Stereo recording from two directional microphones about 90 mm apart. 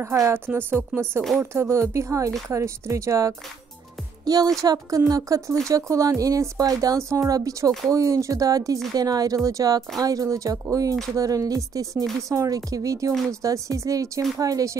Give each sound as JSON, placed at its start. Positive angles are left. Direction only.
{"t": 0.0, "sound": "a woman's voice", "side_deg": -30}
{"t": 4.6, "sound": "speech", "side_deg": -40}